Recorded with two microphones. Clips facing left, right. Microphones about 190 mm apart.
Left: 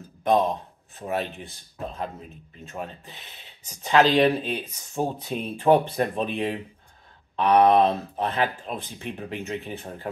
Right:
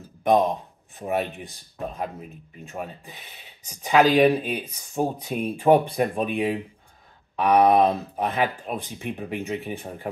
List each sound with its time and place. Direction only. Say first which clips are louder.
0.2 s speech: right 2 dB; 15° right (ahead or behind)
2.7 s speech: right 1 dB; 10° right (ahead or behind)